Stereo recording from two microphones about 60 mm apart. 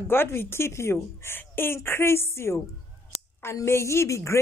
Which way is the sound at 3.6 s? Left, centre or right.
Left.